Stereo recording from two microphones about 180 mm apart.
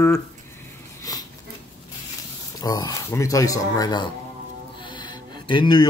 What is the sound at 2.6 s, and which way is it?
Speech, 20° left (ahead or behind).